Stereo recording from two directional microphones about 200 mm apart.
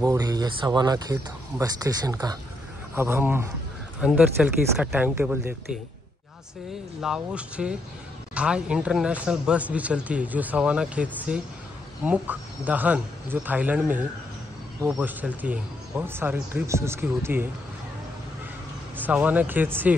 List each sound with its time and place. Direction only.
0.0 s a man's voice: 20° right (ahead or behind)
7.0 s speech: 5° right (ahead or behind)
19.0 s speech: 10° right (ahead or behind)